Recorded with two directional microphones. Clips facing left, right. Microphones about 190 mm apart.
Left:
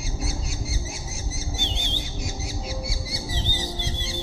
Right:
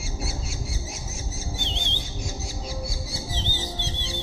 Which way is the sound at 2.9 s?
15° left (ahead or behind).